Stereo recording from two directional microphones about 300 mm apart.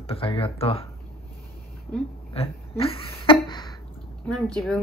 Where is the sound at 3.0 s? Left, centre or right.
Centre.